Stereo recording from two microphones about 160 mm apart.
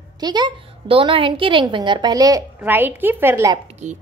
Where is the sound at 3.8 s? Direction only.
45° right (ahead or behind).